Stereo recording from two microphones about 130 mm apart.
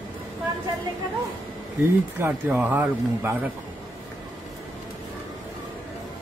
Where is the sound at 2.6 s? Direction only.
15° right (ahead or behind).